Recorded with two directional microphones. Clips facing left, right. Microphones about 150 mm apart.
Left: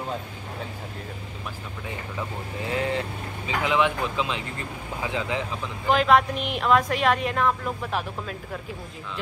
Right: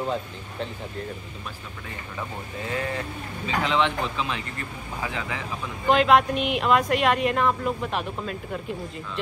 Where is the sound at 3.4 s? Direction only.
15° left (ahead or behind).